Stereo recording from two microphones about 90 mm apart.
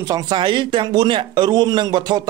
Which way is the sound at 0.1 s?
60° right (ahead or behind).